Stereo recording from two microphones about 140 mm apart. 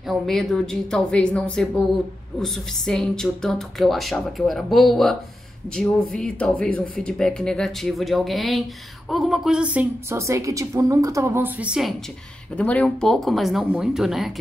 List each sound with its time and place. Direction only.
0.1 s speech: centre (ahead or behind)
10.1 s a woman's voice: 20° right (ahead or behind)
12.5 s speech: 10° left (ahead or behind)